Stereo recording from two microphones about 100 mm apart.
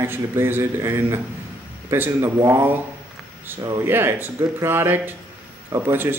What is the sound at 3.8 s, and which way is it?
A man's voice, 25° right (ahead or behind).